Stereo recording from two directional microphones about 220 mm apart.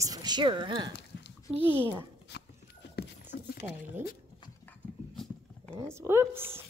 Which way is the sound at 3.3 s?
45° left (ahead or behind).